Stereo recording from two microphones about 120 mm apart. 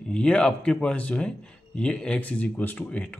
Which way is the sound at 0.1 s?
5° left (ahead or behind).